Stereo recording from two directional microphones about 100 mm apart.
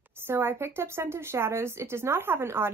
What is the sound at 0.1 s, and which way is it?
A woman's voice, 20° right (ahead or behind).